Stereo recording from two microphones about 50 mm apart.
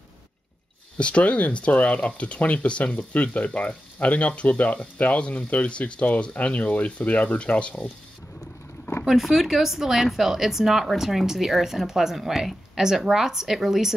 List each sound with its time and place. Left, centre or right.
0.9 s speech: left
9.0 s speech: centre